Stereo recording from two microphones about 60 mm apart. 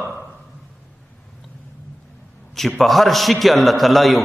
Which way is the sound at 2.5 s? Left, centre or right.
Centre.